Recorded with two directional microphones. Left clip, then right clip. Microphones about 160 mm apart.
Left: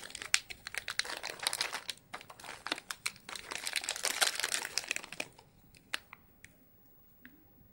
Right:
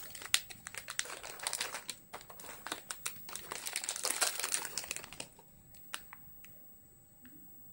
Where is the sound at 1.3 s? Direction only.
5° left (ahead or behind).